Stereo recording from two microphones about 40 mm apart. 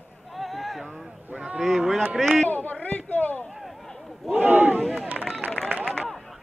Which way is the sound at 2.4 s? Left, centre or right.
Left.